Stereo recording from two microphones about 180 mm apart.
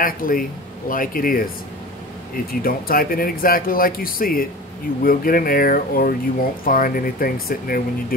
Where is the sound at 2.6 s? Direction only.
55° left (ahead or behind).